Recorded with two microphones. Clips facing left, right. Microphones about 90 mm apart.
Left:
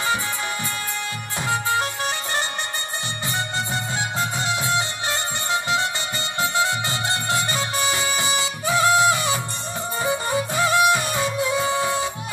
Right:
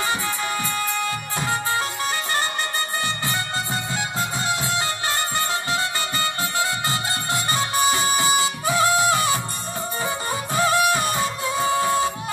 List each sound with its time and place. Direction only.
5.5 s music: 20° left (ahead or behind)
7.5 s music: 25° right (ahead or behind)
8.4 s music: 25° left (ahead or behind)
10.5 s music: 40° right (ahead or behind)